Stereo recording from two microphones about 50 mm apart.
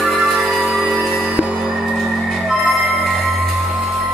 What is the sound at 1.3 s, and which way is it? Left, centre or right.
Music, right.